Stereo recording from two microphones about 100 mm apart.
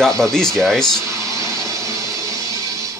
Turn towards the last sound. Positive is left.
turn(degrees=-35)  # may be behind; listen again after turning